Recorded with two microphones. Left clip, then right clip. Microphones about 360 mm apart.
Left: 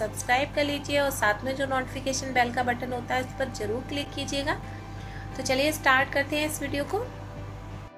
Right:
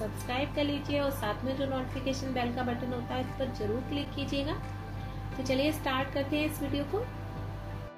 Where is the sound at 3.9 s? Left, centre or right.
Left.